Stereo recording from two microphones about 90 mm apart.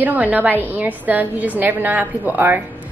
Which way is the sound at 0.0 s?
20° right (ahead or behind).